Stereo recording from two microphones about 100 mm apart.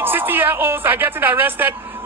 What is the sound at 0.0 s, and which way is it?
A man's voice, 20° right (ahead or behind).